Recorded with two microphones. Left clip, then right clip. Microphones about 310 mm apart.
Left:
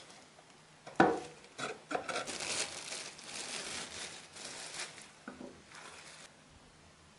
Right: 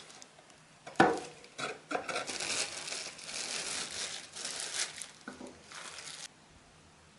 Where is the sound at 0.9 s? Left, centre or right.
Centre.